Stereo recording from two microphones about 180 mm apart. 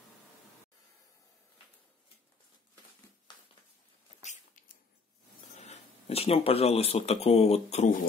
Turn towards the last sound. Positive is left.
turn(degrees=35)  # may be behind; listen again after turning